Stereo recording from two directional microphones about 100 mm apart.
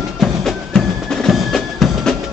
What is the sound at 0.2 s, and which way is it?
Music, centre (ahead or behind).